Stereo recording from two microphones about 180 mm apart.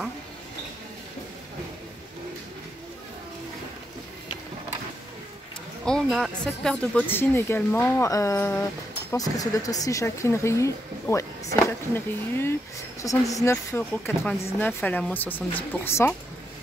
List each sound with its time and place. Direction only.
5.9 s a woman's voice: 5° left (ahead or behind)